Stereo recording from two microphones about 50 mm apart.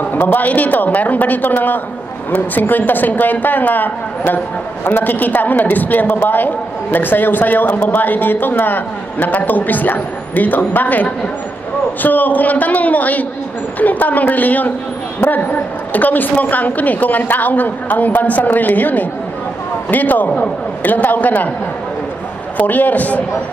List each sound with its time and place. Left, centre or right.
0.1 s a man's voice: left
20.2 s speech: left
20.8 s a man's voice: left
22.6 s a man's voice: left